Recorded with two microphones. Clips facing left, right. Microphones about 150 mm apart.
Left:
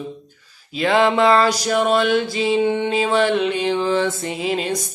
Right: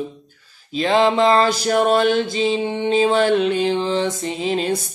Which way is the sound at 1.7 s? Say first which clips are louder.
Right 2 dB; 40° right (ahead or behind).